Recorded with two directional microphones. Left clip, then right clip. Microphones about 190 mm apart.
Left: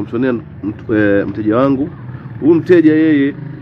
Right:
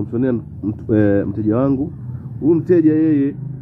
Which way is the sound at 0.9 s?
20° right (ahead or behind).